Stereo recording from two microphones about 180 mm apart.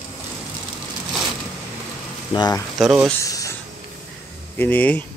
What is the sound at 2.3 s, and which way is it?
Speech, 20° left (ahead or behind).